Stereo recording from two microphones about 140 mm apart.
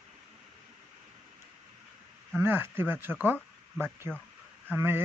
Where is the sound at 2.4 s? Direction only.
15° right (ahead or behind).